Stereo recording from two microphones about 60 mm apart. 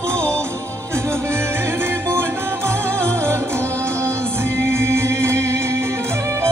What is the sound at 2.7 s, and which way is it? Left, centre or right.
Music, right.